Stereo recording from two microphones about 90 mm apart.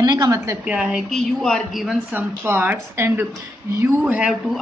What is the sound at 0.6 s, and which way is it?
Speech, 10° right (ahead or behind).